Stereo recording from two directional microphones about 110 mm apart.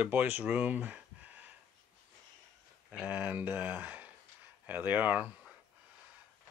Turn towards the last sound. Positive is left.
turn(degrees=-15)  # may be behind; listen again after turning